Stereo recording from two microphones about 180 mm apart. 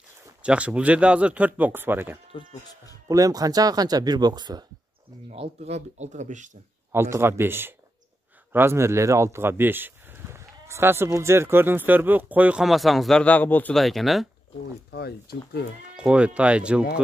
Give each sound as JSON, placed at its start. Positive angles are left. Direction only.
{"t": 0.4, "sound": "speech", "side_deg": -5}
{"t": 2.3, "sound": "speech", "side_deg": 20}
{"t": 3.1, "sound": "speech", "side_deg": -20}
{"t": 5.3, "sound": "speech", "side_deg": -35}
{"t": 6.9, "sound": "speech", "side_deg": -15}
{"t": 14.9, "sound": "speech", "side_deg": 65}
{"t": 16.0, "sound": "speech", "side_deg": -5}